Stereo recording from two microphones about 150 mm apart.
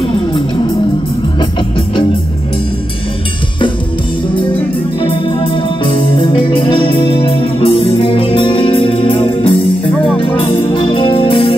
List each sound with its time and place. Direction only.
5.9 s music: 35° left (ahead or behind)